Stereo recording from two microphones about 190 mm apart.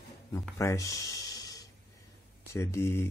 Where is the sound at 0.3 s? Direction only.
15° left (ahead or behind).